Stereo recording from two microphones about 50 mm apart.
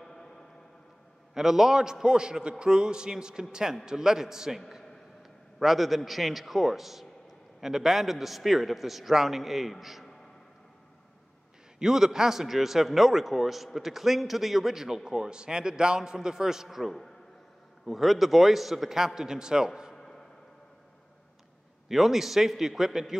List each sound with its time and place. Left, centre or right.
0.0 s a sound: centre
1.3 s a man's voice: centre
5.6 s a man's voice: centre
11.8 s a man's voice: centre
16.6 s a man's voice: centre
20.0 s a sound: centre
21.8 s a man's voice: centre